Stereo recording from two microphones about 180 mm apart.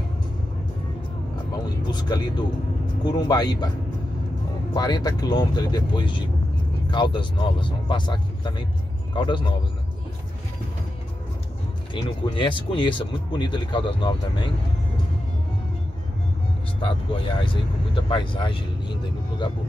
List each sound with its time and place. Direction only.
1.5 s vehicle: 25° left (ahead or behind)
3.0 s speech: 25° left (ahead or behind)
4.7 s speech: 25° left (ahead or behind)
11.9 s speech: 25° left (ahead or behind)
16.8 s speech: 30° left (ahead or behind)